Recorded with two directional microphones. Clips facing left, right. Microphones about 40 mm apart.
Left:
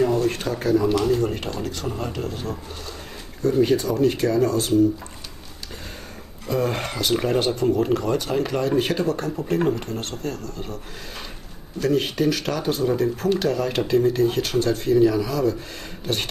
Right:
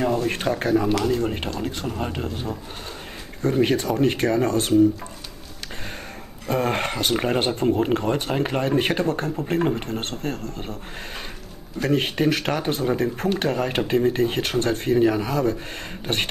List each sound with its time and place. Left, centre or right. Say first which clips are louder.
0.2 s a man's voice: even; right
3.4 s speech: left 1 dB; right
6.4 s speech: right 1 dB; right
11.8 s speech: even; right